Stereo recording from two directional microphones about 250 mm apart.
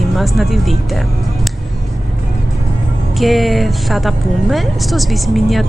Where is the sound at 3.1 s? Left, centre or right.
Centre.